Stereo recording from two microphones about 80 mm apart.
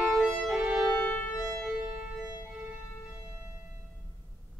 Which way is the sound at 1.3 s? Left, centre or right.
Left.